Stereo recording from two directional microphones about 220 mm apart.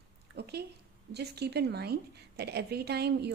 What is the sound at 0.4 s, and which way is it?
A woman's voice, 50° right (ahead or behind).